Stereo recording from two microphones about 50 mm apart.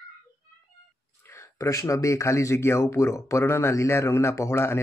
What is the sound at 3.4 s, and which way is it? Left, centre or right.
Speech, left.